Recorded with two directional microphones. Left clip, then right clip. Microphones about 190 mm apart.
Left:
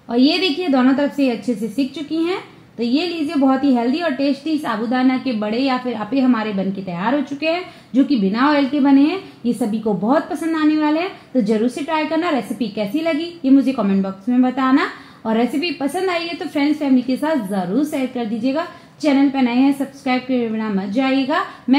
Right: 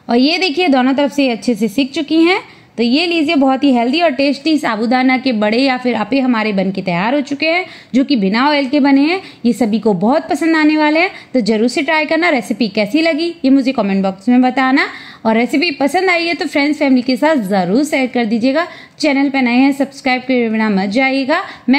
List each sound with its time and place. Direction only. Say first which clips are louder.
0.1 s a woman's voice: right 4 dB; 35° right (ahead or behind)